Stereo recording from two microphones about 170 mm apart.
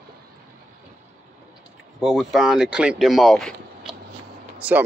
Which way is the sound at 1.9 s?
Centre (ahead or behind).